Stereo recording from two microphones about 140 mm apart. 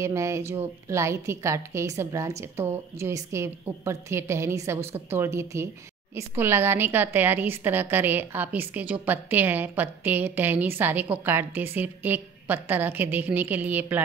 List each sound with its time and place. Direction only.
0.0 s a woman's voice: 20° right (ahead or behind)